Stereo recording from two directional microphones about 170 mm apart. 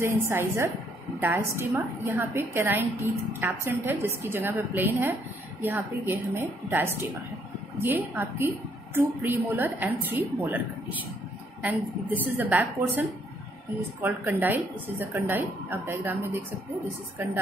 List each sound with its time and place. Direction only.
0.0 s a woman's voice: 15° right (ahead or behind)
12.4 s a woman's voice: 10° right (ahead or behind)
14.0 s a woman's voice: 10° right (ahead or behind)